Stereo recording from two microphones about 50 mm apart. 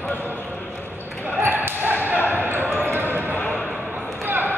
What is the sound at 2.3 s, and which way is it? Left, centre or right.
Basketball bounce, right.